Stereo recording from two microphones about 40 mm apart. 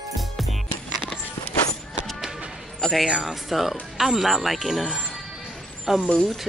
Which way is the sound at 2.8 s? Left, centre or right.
Centre.